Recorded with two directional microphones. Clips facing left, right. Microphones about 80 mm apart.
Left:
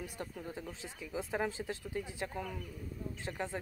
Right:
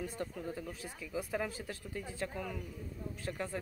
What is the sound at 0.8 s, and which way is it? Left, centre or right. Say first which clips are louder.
Speech: left 1 dB; left.